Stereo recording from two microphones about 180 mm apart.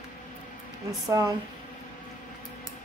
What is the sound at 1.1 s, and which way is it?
Speech, 20° right (ahead or behind).